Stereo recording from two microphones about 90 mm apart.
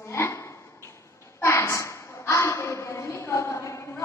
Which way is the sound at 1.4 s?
30° left (ahead or behind).